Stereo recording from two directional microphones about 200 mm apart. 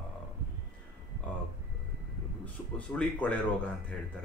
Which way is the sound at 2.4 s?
5° left (ahead or behind).